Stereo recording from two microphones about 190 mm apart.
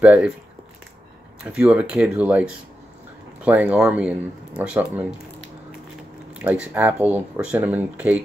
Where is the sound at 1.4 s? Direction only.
5° right (ahead or behind).